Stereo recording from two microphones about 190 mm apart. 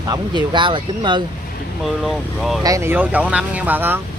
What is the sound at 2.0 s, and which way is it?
Speech, centre (ahead or behind).